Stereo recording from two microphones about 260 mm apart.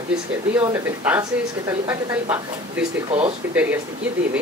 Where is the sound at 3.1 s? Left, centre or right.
Right.